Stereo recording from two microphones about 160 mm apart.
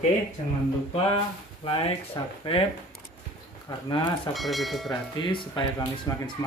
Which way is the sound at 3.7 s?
30° left (ahead or behind).